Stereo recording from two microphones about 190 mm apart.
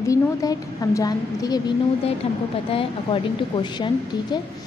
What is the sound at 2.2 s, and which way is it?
A woman's voice, 35° left (ahead or behind).